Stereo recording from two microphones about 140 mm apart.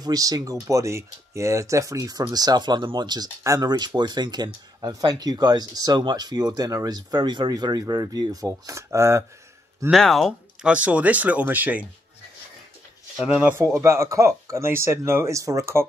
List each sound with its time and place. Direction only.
0.0 s speech: 25° right (ahead or behind)
9.8 s speech: centre (ahead or behind)
13.2 s speech: 10° right (ahead or behind)